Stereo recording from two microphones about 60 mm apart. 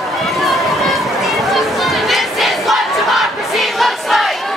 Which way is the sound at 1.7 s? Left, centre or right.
Centre.